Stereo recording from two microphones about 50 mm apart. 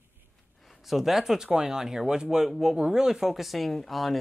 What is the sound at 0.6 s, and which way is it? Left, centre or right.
Speech, centre.